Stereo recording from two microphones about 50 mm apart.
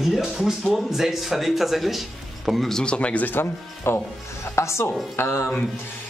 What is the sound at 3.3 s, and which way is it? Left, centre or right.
Speech, left.